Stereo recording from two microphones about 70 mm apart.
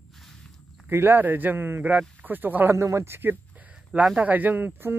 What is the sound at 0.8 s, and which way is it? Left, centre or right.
Speech, right.